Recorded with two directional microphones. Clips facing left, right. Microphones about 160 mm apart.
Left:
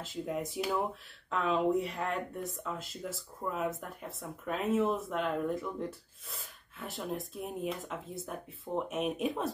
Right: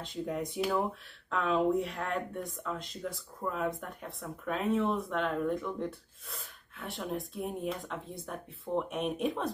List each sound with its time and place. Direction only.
0.0 s speech: 5° left (ahead or behind)